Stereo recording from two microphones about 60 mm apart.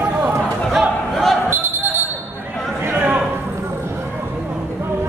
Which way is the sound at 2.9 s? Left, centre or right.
Right.